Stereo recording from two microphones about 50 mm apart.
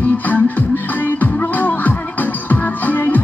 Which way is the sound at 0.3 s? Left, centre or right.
Left.